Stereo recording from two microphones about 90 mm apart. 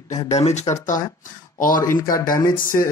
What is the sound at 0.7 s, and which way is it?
Speech, 60° left (ahead or behind).